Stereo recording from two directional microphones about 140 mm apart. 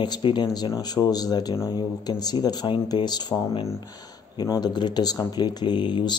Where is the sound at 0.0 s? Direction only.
35° left (ahead or behind).